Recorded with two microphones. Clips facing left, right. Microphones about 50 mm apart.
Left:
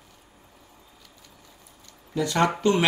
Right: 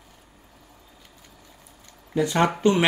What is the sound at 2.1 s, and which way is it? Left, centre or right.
Speech, right.